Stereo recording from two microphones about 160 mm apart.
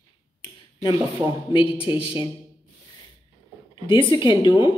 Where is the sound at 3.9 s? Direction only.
30° left (ahead or behind).